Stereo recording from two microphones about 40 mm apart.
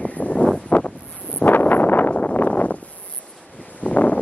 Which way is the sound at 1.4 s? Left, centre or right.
Left.